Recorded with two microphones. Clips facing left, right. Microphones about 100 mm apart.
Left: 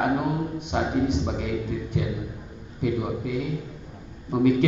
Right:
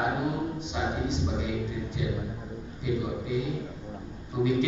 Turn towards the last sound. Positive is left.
turn(degrees=55)  # may be behind; listen again after turning